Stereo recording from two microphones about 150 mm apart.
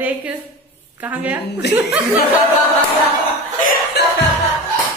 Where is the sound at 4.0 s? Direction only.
90° left.